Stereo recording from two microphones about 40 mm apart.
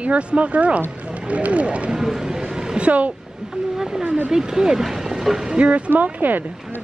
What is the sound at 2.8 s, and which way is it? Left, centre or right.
Speech, right.